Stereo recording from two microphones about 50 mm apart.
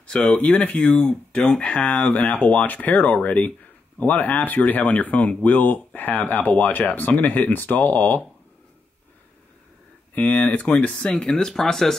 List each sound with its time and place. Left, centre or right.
0.0 s speech: centre; by 8.2 s left
10.1 s speech: left; by 11.9 s centre